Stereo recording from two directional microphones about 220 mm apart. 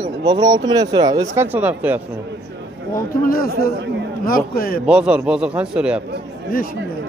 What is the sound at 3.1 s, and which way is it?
Speech, 40° left (ahead or behind).